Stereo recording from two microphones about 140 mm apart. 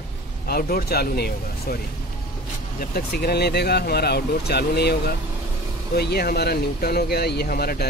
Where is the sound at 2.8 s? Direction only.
90° left.